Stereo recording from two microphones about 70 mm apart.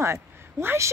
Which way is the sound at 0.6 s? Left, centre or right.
Right.